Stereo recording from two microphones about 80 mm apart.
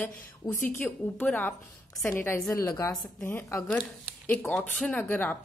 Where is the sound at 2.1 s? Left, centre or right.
Left.